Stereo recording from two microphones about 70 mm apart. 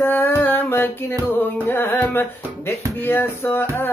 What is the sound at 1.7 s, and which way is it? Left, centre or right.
Music, left.